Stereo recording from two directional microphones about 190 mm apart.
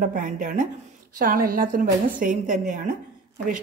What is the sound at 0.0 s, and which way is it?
A woman's voice, 45° right (ahead or behind).